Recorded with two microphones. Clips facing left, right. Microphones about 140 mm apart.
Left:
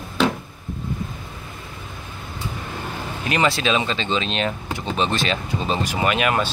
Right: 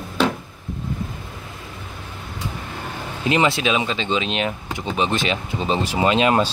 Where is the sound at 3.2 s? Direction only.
20° right (ahead or behind).